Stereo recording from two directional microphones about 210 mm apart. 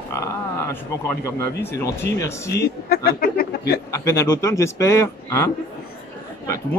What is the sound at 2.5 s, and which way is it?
A man's voice, 50° left (ahead or behind).